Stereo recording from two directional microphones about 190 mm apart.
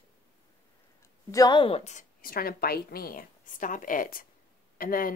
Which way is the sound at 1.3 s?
20° left (ahead or behind).